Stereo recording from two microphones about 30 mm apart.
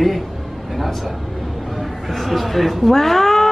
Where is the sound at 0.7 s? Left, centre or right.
Centre.